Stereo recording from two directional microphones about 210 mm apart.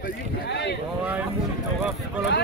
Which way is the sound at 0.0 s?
50° left (ahead or behind).